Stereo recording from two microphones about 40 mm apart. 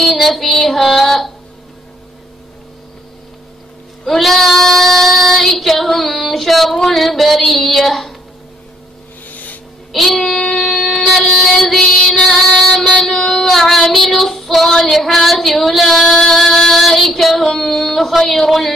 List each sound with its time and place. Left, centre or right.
0.0 s child singing: centre
4.0 s child singing: centre
9.3 s a sound: left
9.9 s child singing: centre
11.3 s music: centre
12.9 s child singing: centre
16.3 s music: centre
16.7 s child singing: centre